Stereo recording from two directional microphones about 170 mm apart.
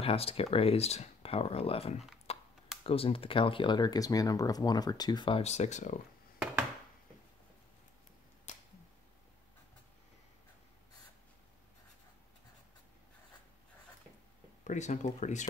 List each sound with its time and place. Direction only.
0.0 s speech: 35° left (ahead or behind)
2.3 s a sound: 35° left (ahead or behind)
2.8 s speech: 35° left (ahead or behind)
5.4 s speech: 40° left (ahead or behind)
8.5 s a sound: 45° left (ahead or behind)
14.6 s speech: 45° left (ahead or behind)